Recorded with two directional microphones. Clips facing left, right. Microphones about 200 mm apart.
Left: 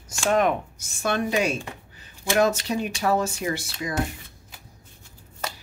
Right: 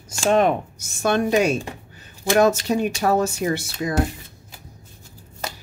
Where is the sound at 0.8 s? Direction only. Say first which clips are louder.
Right 5 dB; 45° right (ahead or behind).